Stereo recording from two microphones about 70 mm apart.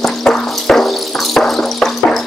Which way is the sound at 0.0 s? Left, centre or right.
Centre.